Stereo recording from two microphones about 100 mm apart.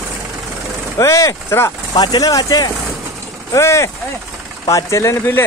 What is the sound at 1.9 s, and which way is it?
Speech, 45° left (ahead or behind).